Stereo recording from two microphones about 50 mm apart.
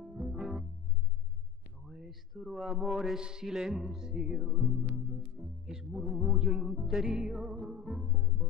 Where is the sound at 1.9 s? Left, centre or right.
Centre.